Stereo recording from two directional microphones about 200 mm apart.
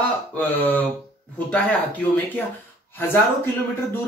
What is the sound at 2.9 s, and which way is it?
Speech, 10° left (ahead or behind).